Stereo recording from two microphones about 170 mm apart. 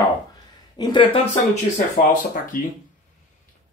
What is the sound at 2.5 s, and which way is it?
Speech, 55° left (ahead or behind).